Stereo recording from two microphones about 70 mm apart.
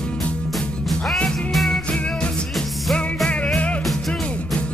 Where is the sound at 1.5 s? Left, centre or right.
Centre.